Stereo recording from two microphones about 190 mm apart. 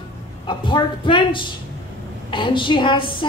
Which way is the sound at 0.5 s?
25° left (ahead or behind).